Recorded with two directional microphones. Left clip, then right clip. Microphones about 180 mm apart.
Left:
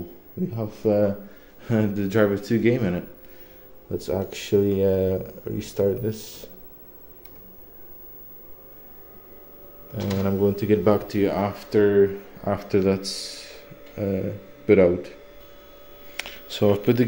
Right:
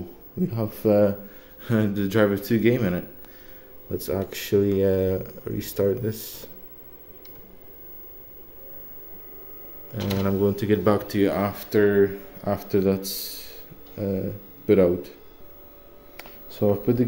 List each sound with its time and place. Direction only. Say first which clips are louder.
0.4 s a man's voice: right 1 dB; 20° right (ahead or behind)
1.6 s speech: even; 5° right (ahead or behind)
9.9 s speech: even; 5° right (ahead or behind)
16.2 s a sound: left 3 dB; 10° right (ahead or behind)